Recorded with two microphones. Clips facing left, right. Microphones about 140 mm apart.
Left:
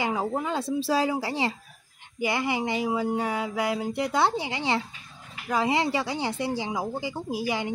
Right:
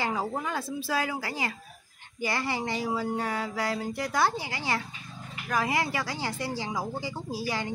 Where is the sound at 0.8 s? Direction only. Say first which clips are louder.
Left 6 dB; 30° left (ahead or behind).